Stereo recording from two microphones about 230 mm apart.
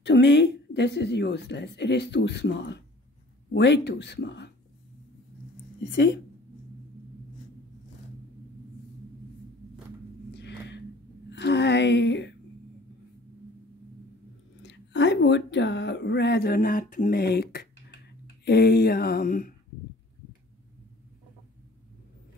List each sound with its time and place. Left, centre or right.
0.0 s speech: left
5.9 s speech: left
10.3 s a sound: left
11.2 s speech: left
14.6 s speech: left
18.4 s a sound: left